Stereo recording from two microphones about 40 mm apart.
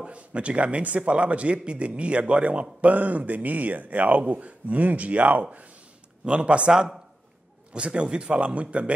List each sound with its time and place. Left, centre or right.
0.0 s a man's voice: right
2.9 s a man's voice: right
6.7 s speech: centre
7.7 s a man's voice: right